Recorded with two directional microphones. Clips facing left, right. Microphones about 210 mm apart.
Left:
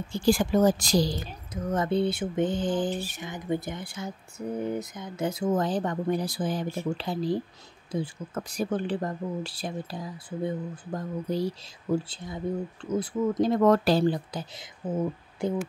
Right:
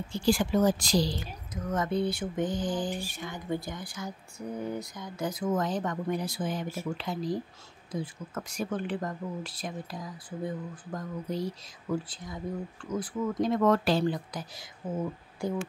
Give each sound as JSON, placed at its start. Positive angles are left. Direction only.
{"t": 0.1, "sound": "a woman's voice", "side_deg": 45}
{"t": 1.5, "sound": "speech", "side_deg": 30}